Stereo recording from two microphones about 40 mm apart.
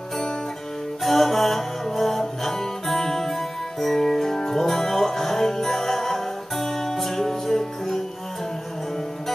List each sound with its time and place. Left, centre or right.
1.0 s music: centre